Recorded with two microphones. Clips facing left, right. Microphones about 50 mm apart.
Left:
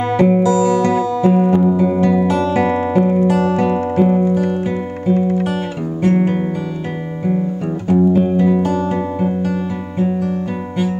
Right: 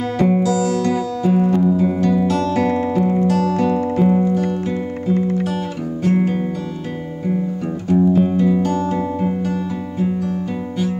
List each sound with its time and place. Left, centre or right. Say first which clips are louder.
0.2 s music: left 3 dB; centre
7.9 s music: left 1 dB; centre